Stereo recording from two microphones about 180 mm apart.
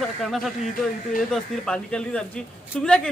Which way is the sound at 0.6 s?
50° left (ahead or behind).